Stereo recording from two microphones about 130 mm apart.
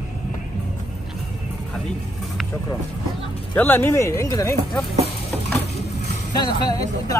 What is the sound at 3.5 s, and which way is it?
Speech, 15° left (ahead or behind).